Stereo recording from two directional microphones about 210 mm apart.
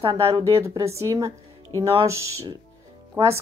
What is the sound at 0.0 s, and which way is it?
Speech, 25° right (ahead or behind).